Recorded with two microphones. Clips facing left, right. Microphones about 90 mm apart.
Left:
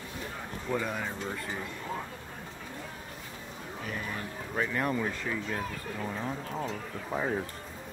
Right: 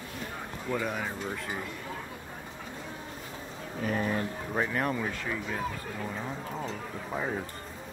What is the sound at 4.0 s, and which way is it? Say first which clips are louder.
Speech: right 7 dB; 30° right (ahead or behind).